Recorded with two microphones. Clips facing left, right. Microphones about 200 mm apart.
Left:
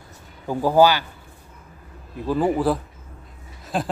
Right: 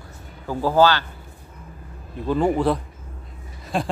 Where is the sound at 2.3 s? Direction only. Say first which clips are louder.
Right 1 dB; 5° left (ahead or behind).